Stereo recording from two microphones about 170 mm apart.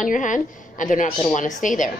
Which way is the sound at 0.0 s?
50° left (ahead or behind).